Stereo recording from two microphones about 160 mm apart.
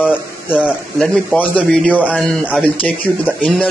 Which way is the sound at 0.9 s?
10° left (ahead or behind).